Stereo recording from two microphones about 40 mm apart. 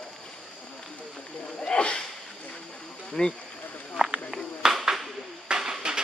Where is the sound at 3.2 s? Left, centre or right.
Centre.